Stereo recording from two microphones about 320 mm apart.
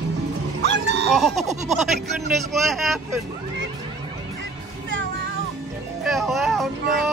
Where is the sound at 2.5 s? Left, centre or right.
Centre.